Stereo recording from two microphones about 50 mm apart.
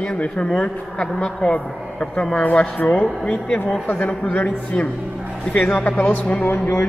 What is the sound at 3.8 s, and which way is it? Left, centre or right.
Speech, left.